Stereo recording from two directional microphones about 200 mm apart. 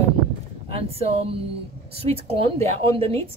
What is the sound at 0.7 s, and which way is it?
Speech, 25° right (ahead or behind).